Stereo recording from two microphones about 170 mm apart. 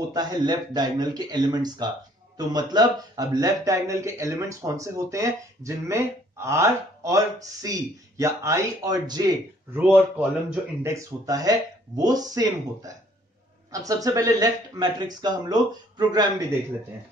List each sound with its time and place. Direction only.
0.1 s speech: 25° right (ahead or behind)
9.8 s speech: 10° right (ahead or behind)